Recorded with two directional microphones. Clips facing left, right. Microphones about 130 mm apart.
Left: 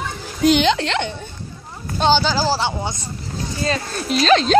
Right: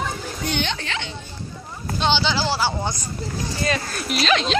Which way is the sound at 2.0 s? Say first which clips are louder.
Left 5 dB; 40° left (ahead or behind).